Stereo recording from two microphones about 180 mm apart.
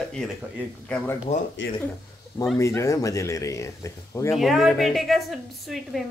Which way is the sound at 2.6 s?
15° left (ahead or behind).